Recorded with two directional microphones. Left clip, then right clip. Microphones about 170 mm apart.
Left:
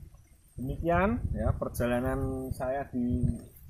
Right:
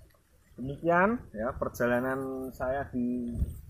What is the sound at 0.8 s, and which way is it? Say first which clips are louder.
Speech: right 2 dB; 5° right (ahead or behind).